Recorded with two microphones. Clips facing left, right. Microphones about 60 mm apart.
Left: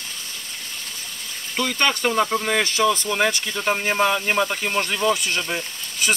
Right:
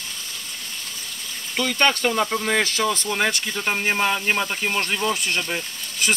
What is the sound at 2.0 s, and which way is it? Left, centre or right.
Speech, centre.